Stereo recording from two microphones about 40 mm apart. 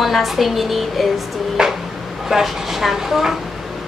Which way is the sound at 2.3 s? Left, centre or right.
Centre.